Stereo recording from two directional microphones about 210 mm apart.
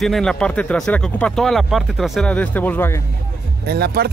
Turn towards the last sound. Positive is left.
turn(degrees=-50)  # may be behind; listen again after turning